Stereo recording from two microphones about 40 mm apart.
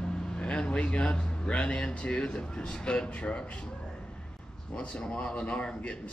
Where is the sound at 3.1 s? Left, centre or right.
Left.